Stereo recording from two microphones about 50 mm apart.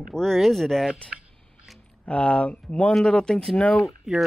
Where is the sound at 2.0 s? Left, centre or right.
Left.